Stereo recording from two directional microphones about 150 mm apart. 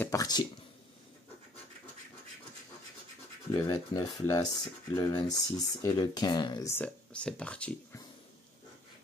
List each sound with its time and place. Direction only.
0.0 s speech: 20° left (ahead or behind)
3.5 s speech: 25° left (ahead or behind)
6.7 s speech: 10° left (ahead or behind)